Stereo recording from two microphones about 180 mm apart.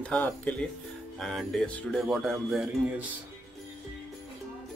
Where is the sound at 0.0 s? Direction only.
10° left (ahead or behind).